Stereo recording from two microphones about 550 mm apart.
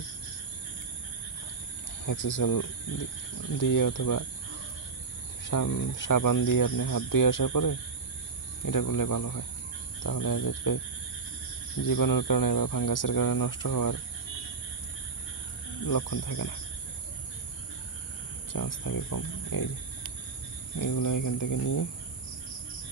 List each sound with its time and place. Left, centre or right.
2.0 s speech: left
5.4 s speech: left
11.8 s speech: left
15.9 s speech: left
18.5 s speech: left
20.8 s speech: left